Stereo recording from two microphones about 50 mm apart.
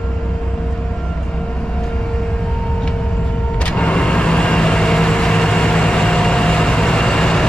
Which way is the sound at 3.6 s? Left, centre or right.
Left.